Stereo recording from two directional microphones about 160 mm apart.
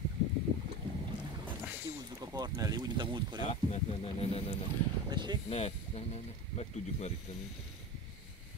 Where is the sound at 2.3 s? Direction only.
25° right (ahead or behind).